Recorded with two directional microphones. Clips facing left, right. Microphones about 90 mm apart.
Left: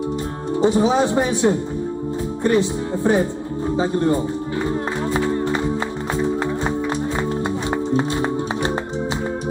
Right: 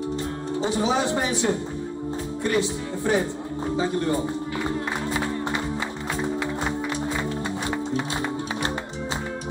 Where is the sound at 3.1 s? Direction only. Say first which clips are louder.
Left 5 dB; 30° left (ahead or behind).